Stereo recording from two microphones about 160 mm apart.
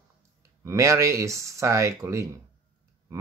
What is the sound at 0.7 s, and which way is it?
Speech, 20° right (ahead or behind).